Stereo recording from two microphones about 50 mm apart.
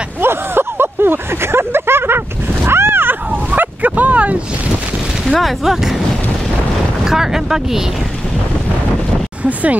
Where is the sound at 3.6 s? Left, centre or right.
Right.